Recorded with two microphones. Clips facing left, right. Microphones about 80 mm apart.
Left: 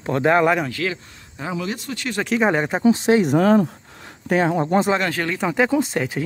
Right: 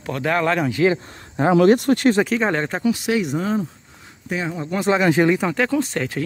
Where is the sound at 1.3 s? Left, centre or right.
Right.